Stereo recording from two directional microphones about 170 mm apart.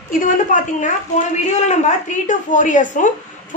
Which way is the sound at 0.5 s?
45° left (ahead or behind).